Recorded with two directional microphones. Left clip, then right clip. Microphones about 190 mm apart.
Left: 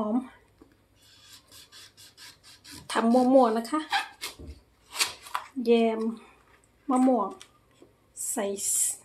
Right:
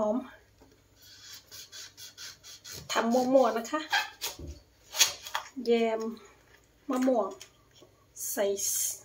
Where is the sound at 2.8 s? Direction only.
40° left (ahead or behind).